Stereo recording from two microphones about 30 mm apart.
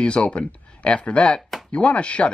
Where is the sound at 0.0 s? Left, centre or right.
Left.